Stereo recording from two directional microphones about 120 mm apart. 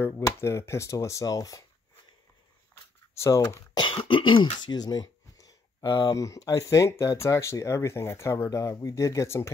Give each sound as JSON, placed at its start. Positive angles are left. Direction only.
{"t": 0.2, "sound": "speech", "side_deg": 25}
{"t": 3.2, "sound": "speech", "side_deg": 30}
{"t": 3.9, "sound": "speech", "side_deg": 45}